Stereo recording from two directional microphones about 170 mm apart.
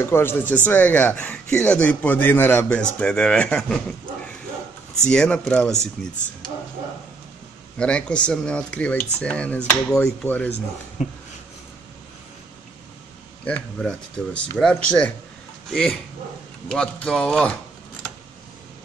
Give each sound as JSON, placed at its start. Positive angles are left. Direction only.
{"t": 0.0, "sound": "a man's voice", "side_deg": 15}
{"t": 5.0, "sound": "speech", "side_deg": 5}
{"t": 7.7, "sound": "a man's voice", "side_deg": 5}
{"t": 11.0, "sound": "a sound", "side_deg": 40}
{"t": 13.5, "sound": "speech", "side_deg": 5}